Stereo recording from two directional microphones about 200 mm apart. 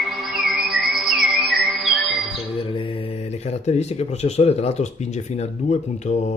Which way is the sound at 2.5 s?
25° left (ahead or behind).